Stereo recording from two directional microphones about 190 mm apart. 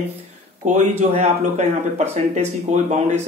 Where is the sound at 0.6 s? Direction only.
40° right (ahead or behind).